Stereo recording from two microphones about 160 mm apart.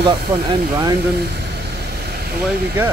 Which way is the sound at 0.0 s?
25° right (ahead or behind).